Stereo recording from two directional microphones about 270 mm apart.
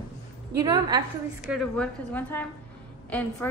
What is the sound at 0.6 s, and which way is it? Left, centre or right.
Speech, centre.